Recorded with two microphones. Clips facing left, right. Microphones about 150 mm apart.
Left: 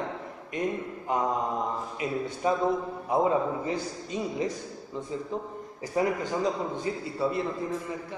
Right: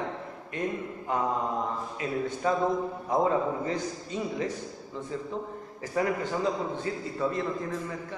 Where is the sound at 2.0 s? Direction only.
15° left (ahead or behind).